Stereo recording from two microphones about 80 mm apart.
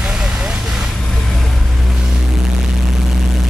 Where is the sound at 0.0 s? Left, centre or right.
Centre.